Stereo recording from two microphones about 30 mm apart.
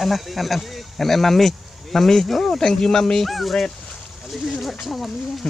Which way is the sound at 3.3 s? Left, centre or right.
Centre.